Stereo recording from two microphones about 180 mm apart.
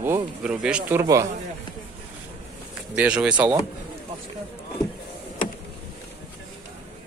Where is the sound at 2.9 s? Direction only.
5° right (ahead or behind).